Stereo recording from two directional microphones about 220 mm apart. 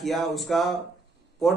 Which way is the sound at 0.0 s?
Centre (ahead or behind).